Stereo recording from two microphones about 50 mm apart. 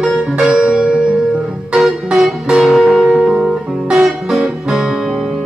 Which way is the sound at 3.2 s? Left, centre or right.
Centre.